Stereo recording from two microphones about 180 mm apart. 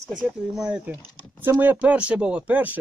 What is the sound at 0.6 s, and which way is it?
Speech, 5° right (ahead or behind).